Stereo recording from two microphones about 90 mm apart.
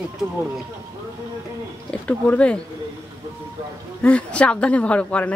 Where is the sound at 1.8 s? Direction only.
15° left (ahead or behind).